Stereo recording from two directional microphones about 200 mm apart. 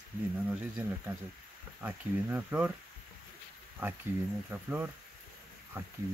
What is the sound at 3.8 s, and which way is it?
Speech, 10° right (ahead or behind).